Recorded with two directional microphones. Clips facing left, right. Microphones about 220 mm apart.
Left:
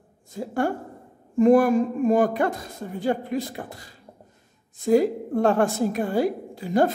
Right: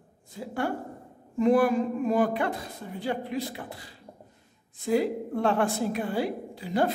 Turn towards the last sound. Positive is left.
turn(degrees=45)  # may be behind; listen again after turning